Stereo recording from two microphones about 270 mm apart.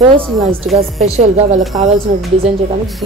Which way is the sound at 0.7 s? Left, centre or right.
Right.